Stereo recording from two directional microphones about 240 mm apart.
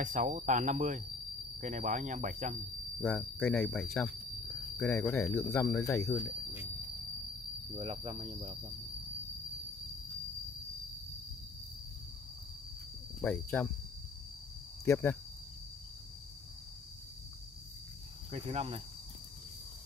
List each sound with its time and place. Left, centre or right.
0.0 s speech: right
3.0 s speech: centre
6.1 s speech: centre
7.7 s cricket: right
13.2 s speech: centre
14.9 s speech: centre
18.3 s cricket: right